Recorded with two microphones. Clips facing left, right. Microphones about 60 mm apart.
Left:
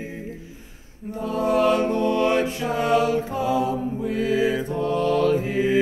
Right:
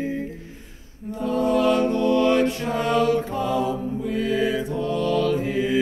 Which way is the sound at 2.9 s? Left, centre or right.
Right.